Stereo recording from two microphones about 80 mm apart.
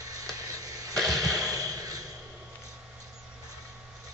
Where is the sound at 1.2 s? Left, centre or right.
Right.